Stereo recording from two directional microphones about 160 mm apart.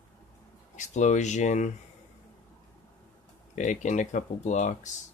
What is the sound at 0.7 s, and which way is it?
Speech, 50° left (ahead or behind).